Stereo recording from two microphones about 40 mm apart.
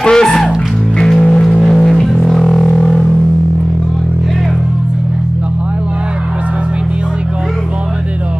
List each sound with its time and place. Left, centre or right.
0.0 s music: centre